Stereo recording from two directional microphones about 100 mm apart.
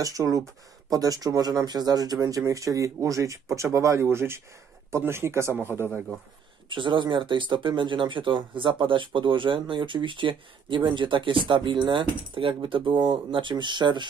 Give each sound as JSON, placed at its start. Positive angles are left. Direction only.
{"t": 0.0, "sound": "speech", "side_deg": -35}
{"t": 6.7, "sound": "speech", "side_deg": -55}